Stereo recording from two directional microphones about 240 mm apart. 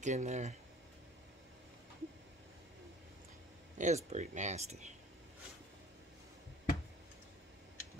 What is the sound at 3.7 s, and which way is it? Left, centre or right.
Speech, right.